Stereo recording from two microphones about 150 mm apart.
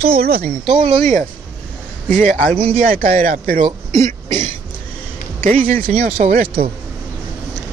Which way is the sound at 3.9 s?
50° right (ahead or behind).